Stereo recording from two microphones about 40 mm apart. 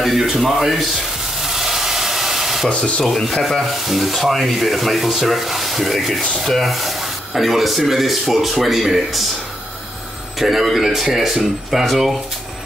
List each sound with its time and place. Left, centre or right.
0.0 s a sound: centre
2.7 s speech: centre
3.1 s speech: centre
10.4 s speech: centre